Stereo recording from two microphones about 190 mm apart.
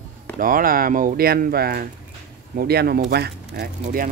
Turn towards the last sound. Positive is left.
turn(degrees=-50)  # may be behind; listen again after turning